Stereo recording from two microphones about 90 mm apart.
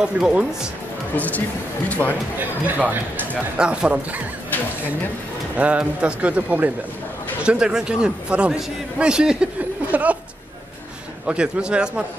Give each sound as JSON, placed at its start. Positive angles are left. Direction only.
{"t": 0.0, "sound": "a man's voice", "side_deg": -10}
{"t": 1.1, "sound": "speech", "side_deg": 15}
{"t": 2.6, "sound": "a man's voice", "side_deg": -15}
{"t": 5.6, "sound": "a man's voice", "side_deg": -15}
{"t": 11.2, "sound": "a man's voice", "side_deg": -10}